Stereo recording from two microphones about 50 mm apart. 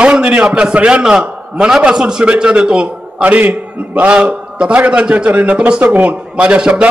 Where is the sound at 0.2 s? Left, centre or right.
Right.